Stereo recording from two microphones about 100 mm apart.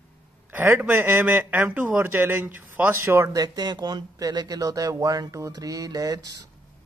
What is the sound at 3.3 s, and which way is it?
Speech, 45° right (ahead or behind).